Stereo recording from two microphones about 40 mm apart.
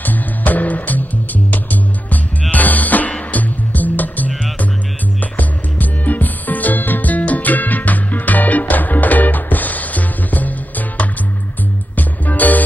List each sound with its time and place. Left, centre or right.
0.0 s music: left
2.5 s music: left
11.9 s music: left